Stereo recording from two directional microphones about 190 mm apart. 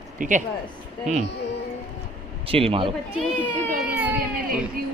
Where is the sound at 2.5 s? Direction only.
30° right (ahead or behind).